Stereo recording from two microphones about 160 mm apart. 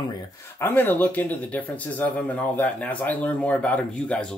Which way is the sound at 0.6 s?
15° left (ahead or behind).